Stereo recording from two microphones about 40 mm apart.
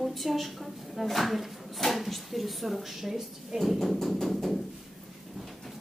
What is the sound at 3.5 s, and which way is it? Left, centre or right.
A woman's voice, centre.